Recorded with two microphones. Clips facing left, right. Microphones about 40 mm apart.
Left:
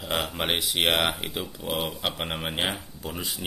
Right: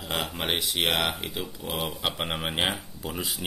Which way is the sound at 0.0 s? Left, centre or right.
Centre.